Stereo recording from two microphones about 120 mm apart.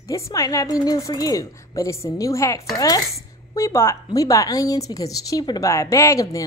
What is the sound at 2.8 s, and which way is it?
Dishes, 30° left (ahead or behind).